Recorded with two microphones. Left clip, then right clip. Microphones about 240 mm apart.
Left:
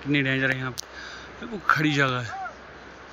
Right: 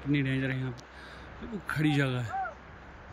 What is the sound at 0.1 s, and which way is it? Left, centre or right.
Speech, centre.